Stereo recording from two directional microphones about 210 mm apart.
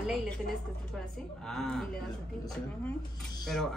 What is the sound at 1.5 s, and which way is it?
Speech, centre (ahead or behind).